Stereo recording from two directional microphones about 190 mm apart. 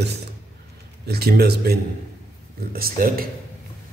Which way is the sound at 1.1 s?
55° right (ahead or behind).